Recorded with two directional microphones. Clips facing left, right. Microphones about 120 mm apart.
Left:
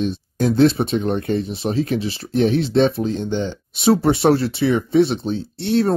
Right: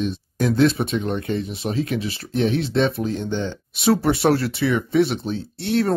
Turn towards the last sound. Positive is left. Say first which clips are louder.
# left 3 dB
turn(degrees=25)  # may be behind; listen again after turning